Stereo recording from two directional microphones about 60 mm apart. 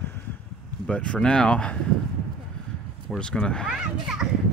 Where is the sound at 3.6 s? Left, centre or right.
Centre.